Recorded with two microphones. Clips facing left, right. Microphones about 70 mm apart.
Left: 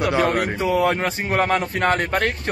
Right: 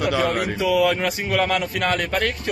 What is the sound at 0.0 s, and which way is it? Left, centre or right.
A man's voice, left.